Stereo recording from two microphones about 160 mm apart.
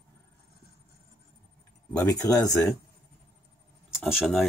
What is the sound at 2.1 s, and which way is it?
Speech, 20° left (ahead or behind).